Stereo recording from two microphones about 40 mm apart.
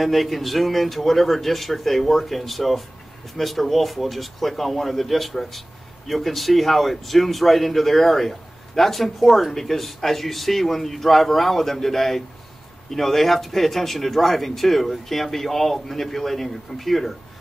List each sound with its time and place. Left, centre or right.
0.0 s speech: centre